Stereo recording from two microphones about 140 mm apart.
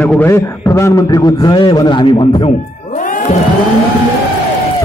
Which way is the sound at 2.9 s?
70° left (ahead or behind).